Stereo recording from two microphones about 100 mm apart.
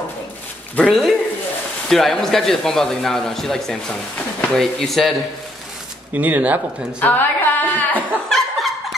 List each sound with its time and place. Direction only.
0.8 s a man's voice: centre (ahead or behind)
6.1 s speech: 15° right (ahead or behind)
7.0 s a woman's voice: 20° left (ahead or behind)
8.3 s laughter: centre (ahead or behind)